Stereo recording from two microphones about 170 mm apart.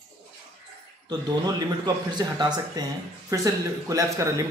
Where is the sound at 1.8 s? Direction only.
25° right (ahead or behind).